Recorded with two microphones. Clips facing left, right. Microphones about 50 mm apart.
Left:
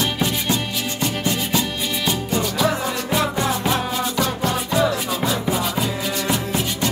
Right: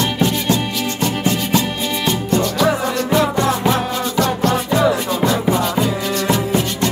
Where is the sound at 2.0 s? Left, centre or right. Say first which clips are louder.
Right 5 dB; centre.